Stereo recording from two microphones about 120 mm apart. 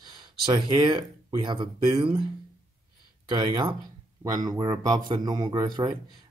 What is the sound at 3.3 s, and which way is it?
Speech, 40° right (ahead or behind).